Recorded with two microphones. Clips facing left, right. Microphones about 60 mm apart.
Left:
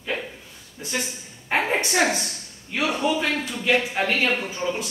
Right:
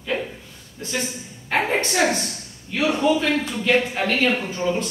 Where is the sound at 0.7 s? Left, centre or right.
Centre.